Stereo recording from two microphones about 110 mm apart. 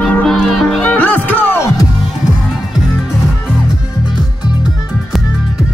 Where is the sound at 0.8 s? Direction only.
15° left (ahead or behind).